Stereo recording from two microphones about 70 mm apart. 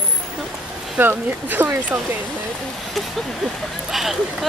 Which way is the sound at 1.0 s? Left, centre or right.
Right.